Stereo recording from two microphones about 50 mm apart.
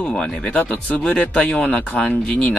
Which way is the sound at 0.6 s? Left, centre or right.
Left.